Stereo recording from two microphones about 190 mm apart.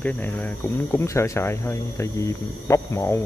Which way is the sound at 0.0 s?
10° left (ahead or behind).